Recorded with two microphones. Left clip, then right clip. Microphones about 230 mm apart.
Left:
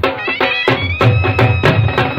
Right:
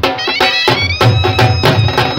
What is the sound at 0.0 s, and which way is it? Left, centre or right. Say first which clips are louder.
Music: right 3 dB; right.